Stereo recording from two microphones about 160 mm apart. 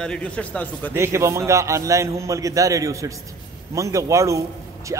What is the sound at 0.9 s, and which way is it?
A man's voice, 15° right (ahead or behind).